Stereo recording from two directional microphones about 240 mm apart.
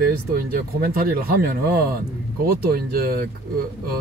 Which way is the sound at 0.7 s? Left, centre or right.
Right.